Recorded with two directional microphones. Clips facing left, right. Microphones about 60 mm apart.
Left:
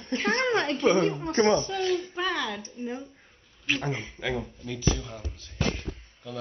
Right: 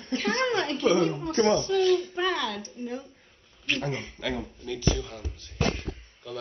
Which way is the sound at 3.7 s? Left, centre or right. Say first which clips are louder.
Even; centre.